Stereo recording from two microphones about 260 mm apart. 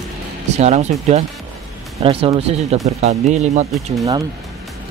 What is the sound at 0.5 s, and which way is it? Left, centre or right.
Speech, right.